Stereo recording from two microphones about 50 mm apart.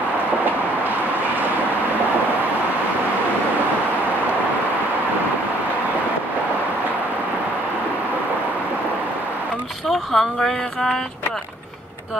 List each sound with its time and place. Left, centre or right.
9.8 s speech: centre